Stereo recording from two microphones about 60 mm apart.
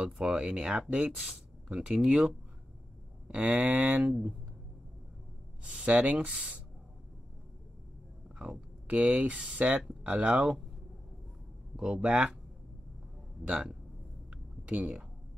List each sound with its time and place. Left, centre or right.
0.0 s speech: centre
3.3 s speech: right
5.6 s speech: centre
8.8 s speech: right
11.7 s speech: centre
14.3 s a sound: centre